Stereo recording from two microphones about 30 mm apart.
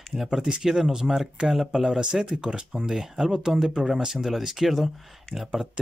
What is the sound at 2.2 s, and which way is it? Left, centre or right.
Speech, right.